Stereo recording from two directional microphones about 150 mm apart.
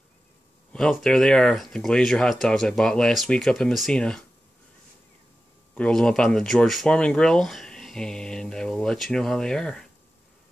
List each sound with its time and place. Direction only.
0.7 s speech: 5° left (ahead or behind)
5.8 s speech: 5° left (ahead or behind)